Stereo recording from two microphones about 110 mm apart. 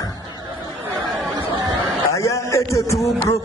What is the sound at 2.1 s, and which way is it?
A man's voice, 30° left (ahead or behind).